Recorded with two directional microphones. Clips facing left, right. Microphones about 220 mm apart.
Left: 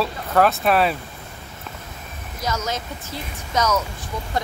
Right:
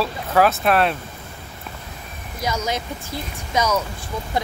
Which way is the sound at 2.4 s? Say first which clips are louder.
Right 2 dB; 10° right (ahead or behind).